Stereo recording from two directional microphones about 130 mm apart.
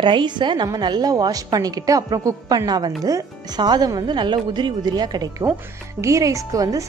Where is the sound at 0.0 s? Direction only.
35° right (ahead or behind).